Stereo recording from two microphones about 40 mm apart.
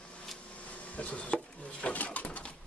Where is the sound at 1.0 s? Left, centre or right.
Left.